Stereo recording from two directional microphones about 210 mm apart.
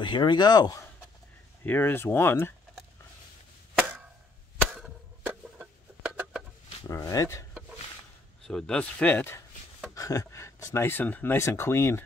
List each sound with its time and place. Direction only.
0.0 s speech: 20° left (ahead or behind)
4.7 s chicken: 5° right (ahead or behind)
6.9 s speech: 15° left (ahead or behind)
8.5 s speech: 5° left (ahead or behind)